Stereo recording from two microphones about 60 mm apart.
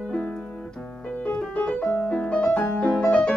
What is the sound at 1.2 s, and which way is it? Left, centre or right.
Music, left.